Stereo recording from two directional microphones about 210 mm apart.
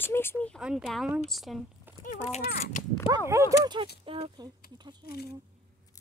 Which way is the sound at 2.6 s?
35° left (ahead or behind).